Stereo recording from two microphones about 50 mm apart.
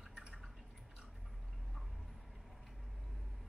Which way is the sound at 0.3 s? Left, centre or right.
Centre.